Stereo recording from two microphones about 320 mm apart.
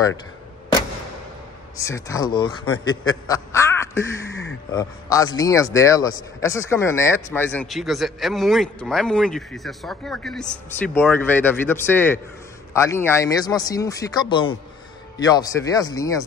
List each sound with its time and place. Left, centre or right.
1.8 s speech: centre
2.6 s a man's voice: left
3.3 s crow: centre
5.4 s a man's voice: centre